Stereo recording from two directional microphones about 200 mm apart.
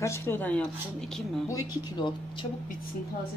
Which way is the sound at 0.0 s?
10° left (ahead or behind).